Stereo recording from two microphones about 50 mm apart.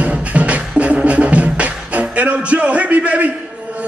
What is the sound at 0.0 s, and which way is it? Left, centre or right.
Music, right.